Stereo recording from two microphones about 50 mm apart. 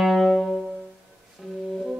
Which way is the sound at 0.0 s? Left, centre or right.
Centre.